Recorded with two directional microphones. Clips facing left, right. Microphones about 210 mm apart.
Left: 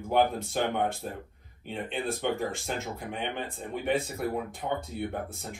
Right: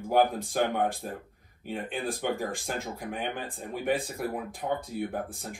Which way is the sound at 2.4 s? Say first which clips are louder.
Even; 55° right (ahead or behind).